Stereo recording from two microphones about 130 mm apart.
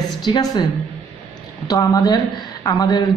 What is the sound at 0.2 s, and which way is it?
Speech, 35° left (ahead or behind).